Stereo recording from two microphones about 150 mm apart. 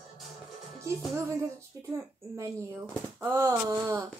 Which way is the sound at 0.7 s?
20° right (ahead or behind).